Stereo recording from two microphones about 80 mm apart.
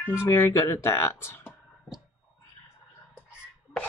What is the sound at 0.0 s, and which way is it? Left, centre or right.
Speech, left.